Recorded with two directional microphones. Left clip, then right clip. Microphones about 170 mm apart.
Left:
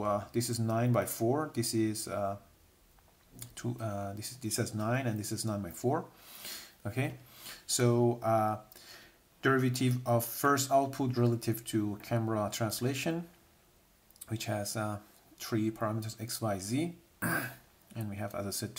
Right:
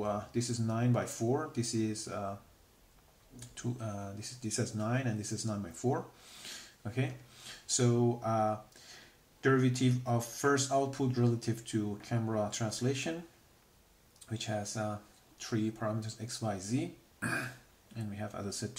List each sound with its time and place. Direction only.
0.0 s speech: 25° left (ahead or behind)
3.3 s speech: 30° left (ahead or behind)
6.4 s a sound: 25° left (ahead or behind)
7.6 s speech: 30° left (ahead or behind)
14.3 s speech: 30° left (ahead or behind)